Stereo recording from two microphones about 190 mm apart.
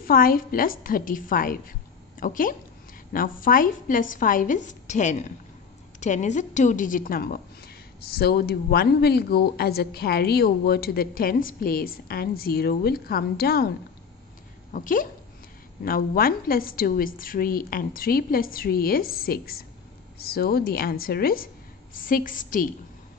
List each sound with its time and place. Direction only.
0.0 s a woman's voice: 50° left (ahead or behind)
14.7 s a woman's voice: 45° left (ahead or behind)